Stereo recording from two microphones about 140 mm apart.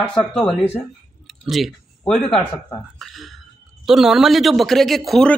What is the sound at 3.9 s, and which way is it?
A man's voice, centre (ahead or behind).